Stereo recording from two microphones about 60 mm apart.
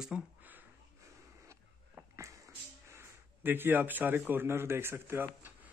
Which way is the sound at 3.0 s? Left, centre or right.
Right.